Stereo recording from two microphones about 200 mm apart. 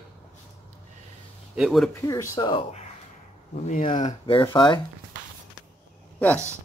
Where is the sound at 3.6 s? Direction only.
40° left (ahead or behind); by 4.8 s 25° left (ahead or behind).